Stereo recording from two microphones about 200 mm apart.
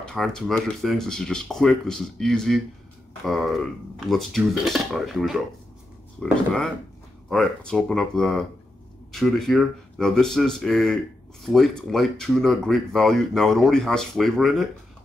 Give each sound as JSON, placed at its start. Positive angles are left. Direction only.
{"t": 0.0, "sound": "speech", "side_deg": 5}
{"t": 7.2, "sound": "speech", "side_deg": 0}